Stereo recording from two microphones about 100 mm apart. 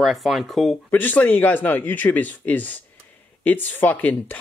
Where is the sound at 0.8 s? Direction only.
20° left (ahead or behind).